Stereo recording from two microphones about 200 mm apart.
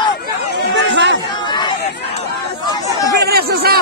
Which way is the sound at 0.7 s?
60° right (ahead or behind).